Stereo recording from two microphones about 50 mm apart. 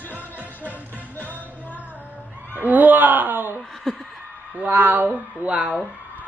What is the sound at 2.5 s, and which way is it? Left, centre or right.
Chuckle, right.